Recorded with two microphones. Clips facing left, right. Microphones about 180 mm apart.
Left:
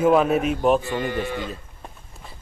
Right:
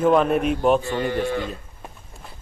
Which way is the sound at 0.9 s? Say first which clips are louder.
Right 2 dB; 15° left (ahead or behind).